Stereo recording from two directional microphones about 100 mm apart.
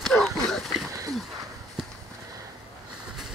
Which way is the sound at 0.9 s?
35° right (ahead or behind).